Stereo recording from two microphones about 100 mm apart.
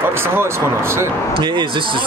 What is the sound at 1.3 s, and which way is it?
Speech, 50° right (ahead or behind).